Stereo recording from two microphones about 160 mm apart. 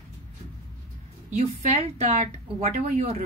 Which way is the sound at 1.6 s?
40° right (ahead or behind).